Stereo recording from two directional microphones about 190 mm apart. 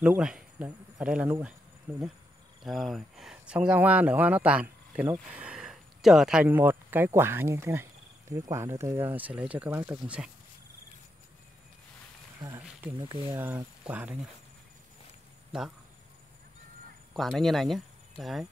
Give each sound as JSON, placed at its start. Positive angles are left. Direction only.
{"t": 0.0, "sound": "speech", "side_deg": -5}
{"t": 12.4, "sound": "speech", "side_deg": -15}
{"t": 13.3, "sound": "speech", "side_deg": -10}
{"t": 17.1, "sound": "speech", "side_deg": 0}